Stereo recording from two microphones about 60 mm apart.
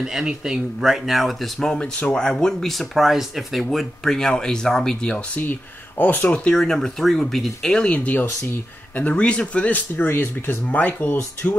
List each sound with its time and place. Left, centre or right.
0.0 s speech: centre
3.6 s speech: centre
5.3 s speech: left
6.5 s speech: centre; by 11.1 s left